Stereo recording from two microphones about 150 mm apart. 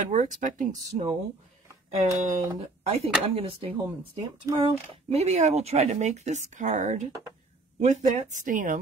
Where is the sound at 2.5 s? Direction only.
45° right (ahead or behind).